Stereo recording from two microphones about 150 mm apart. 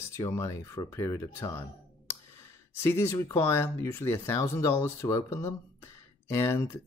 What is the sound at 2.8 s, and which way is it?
Speech, 20° left (ahead or behind).